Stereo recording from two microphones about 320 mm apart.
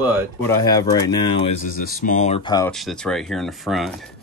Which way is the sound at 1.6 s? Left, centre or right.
Left.